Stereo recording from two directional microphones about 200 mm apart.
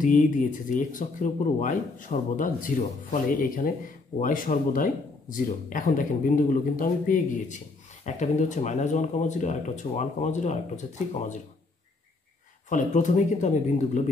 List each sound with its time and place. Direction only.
0.0 s speech: 40° left (ahead or behind)
12.6 s speech: 40° left (ahead or behind)